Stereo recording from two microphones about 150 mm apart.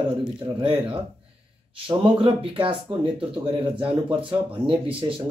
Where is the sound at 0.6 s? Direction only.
35° right (ahead or behind).